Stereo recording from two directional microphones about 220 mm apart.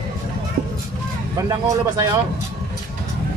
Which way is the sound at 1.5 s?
15° right (ahead or behind).